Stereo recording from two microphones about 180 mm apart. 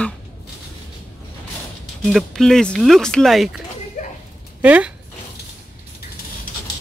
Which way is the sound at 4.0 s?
45° left (ahead or behind).